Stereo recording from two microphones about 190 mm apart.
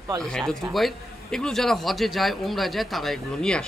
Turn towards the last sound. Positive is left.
turn(degrees=5)  # may be behind; listen again after turning